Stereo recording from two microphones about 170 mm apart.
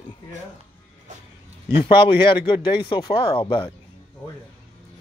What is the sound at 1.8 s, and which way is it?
Speech, 30° left (ahead or behind).